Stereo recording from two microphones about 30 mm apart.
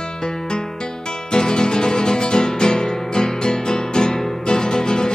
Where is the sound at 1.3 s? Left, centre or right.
Centre.